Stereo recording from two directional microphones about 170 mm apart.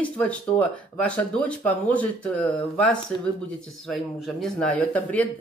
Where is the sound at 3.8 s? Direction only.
Centre (ahead or behind).